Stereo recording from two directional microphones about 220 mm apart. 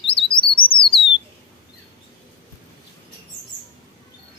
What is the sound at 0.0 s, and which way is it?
Bird, 25° left (ahead or behind).